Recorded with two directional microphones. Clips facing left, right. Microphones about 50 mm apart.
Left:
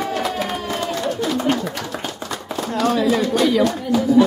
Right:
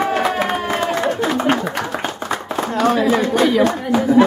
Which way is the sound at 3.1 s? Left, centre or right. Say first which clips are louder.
Right 2 dB; right.